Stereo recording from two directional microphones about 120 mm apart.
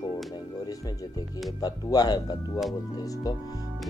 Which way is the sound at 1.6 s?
35° left (ahead or behind).